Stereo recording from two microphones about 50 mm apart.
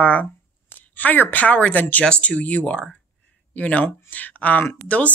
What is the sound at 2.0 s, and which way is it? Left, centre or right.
Speech, left.